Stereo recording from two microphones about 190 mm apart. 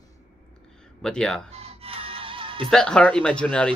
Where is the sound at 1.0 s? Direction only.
5° left (ahead or behind).